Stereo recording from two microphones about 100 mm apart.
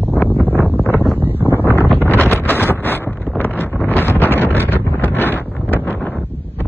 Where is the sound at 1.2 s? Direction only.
20° right (ahead or behind).